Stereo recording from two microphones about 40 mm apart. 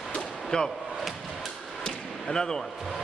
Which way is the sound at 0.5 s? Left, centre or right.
Left.